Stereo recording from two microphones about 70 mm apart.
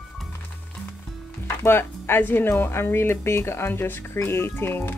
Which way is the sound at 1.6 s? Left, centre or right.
Left.